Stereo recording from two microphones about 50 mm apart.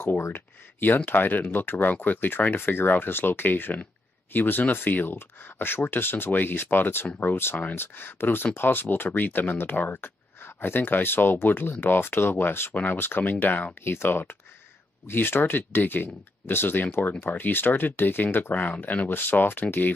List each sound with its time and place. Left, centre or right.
0.3 s speech: left
12.7 s speech: left
13.8 s speech: left